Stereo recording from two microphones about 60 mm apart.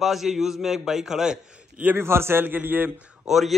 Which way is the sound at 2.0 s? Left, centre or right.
Right.